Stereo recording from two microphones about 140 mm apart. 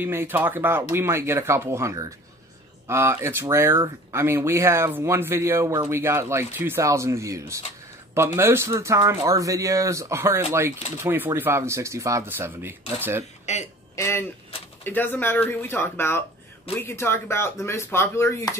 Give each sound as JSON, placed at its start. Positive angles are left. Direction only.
{"t": 0.0, "sound": "speech", "side_deg": -15}
{"t": 13.5, "sound": "speech", "side_deg": 55}
{"t": 13.9, "sound": "speech", "side_deg": 20}